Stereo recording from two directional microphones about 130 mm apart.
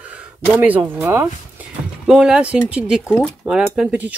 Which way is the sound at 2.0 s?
5° right (ahead or behind).